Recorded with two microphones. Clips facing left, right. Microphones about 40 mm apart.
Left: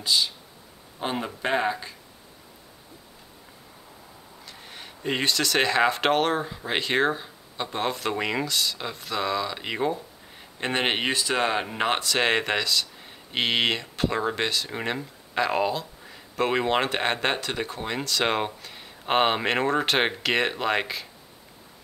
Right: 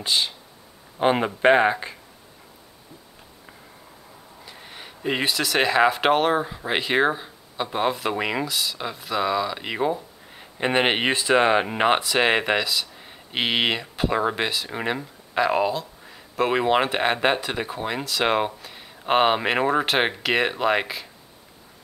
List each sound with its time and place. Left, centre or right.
0.0 s speech: right
4.5 s speech: centre